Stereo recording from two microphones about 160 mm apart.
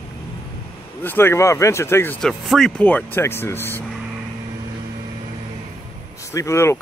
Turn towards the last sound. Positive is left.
turn(degrees=15)  # may be behind; listen again after turning